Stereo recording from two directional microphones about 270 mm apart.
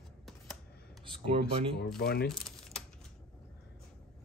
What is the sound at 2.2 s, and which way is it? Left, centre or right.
Typing, centre.